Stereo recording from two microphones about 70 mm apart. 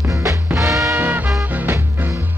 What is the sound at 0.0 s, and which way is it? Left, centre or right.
Music, right.